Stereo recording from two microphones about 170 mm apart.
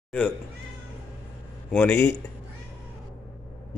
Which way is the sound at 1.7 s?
10° left (ahead or behind).